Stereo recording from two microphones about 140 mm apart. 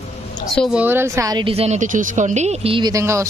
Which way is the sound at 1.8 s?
65° right (ahead or behind).